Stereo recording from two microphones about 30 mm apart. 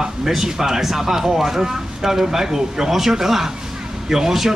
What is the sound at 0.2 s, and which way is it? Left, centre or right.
A man's voice, centre.